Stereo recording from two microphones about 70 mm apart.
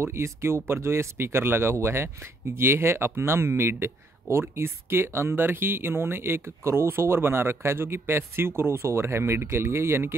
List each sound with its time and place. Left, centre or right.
0.0 s speech: right